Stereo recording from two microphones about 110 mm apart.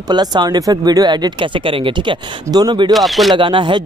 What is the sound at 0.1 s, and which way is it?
Speech, 40° right (ahead or behind).